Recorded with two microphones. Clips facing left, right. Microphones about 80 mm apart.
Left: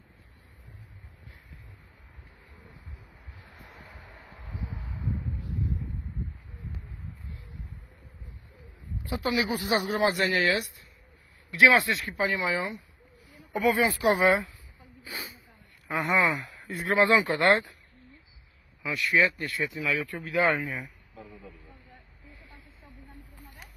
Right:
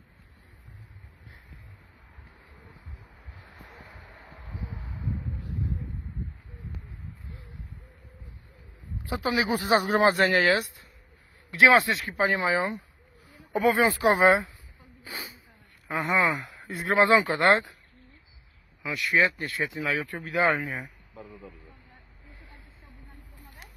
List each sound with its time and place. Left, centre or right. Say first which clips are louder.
3.4 s a sound: right 1 dB; centre
9.0 s a sound: right 1 dB; right
9.5 s speech: right 4 dB; right
12.2 s speech: right 4 dB; right
16.0 s speech: even; centre
18.8 s speech: even; centre
19.1 s speech: right 1 dB; centre
19.8 s speech: even; right
20.1 s speech: right 1 dB; right
20.6 s speech: right 1 dB; right